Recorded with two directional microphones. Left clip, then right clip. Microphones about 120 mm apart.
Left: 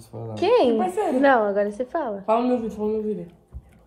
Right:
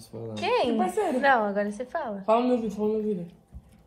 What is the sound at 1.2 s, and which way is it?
Speech, 20° left (ahead or behind).